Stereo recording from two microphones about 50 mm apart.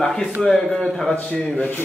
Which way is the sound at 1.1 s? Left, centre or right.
Left.